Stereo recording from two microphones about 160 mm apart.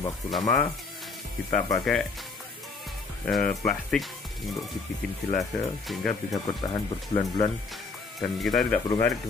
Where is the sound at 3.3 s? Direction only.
5° left (ahead or behind).